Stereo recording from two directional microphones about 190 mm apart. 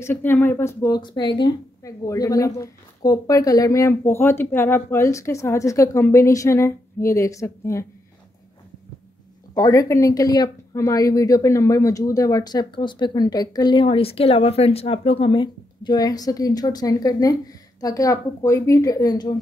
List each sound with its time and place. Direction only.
0.0 s speech: 10° left (ahead or behind)
9.5 s speech: 20° left (ahead or behind)